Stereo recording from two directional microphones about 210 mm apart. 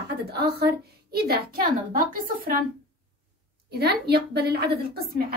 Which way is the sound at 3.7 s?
50° right (ahead or behind).